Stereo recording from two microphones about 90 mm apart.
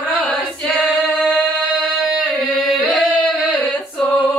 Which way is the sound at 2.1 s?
Centre (ahead or behind).